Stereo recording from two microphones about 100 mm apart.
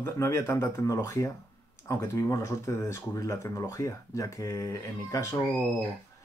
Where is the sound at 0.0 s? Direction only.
30° left (ahead or behind).